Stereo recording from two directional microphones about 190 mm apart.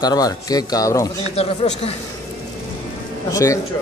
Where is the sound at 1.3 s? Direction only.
30° left (ahead or behind).